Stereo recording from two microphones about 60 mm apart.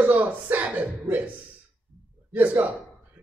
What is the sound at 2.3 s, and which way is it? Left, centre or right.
Speech, right.